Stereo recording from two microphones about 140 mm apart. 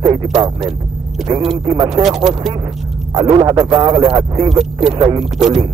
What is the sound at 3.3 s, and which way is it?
Speech, 35° right (ahead or behind).